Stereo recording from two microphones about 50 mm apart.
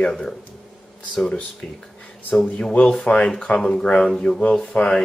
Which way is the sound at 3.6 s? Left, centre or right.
Centre.